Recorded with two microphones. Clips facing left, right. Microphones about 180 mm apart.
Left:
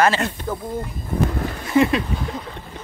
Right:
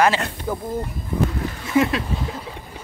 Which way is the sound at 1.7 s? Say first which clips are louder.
Left 2 dB; centre (ahead or behind).